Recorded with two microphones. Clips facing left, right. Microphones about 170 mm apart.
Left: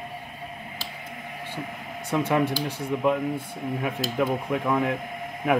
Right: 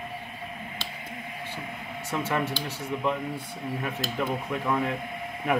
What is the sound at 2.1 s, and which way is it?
Speech, 10° left (ahead or behind).